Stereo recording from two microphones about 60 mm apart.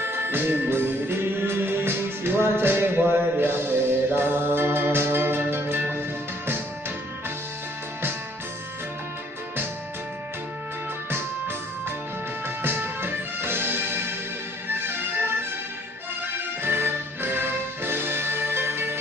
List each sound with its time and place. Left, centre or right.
0.0 s music: right
11.1 s music: right
16.6 s music: right